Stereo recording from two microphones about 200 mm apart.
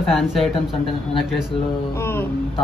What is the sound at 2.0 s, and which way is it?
Speech, 10° left (ahead or behind).